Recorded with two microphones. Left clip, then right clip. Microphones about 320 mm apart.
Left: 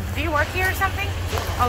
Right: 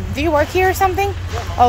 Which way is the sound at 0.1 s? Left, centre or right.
Centre.